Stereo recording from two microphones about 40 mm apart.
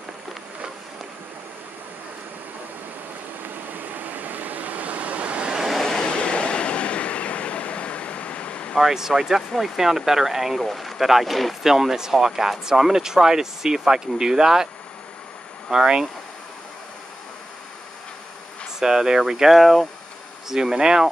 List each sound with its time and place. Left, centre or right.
3.4 s vehicle: right
5.7 s vehicle: centre
5.9 s train: left
8.7 s speech: centre
10.6 s speech: centre
11.6 s speech: centre
15.7 s speech: centre
18.8 s speech: centre
20.4 s speech: centre